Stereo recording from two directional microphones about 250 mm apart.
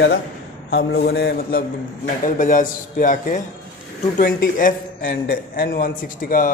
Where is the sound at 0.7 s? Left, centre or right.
Left.